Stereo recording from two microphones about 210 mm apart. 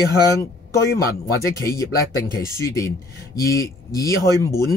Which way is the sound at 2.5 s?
15° left (ahead or behind).